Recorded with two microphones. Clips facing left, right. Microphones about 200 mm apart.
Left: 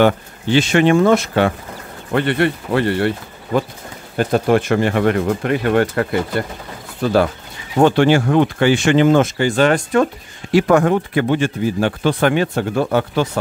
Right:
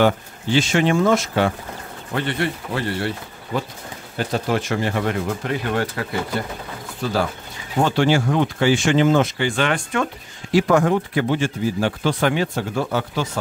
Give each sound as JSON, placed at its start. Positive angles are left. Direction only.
{"t": 0.0, "sound": "speech", "side_deg": 65}
{"t": 10.5, "sound": "speech", "side_deg": 60}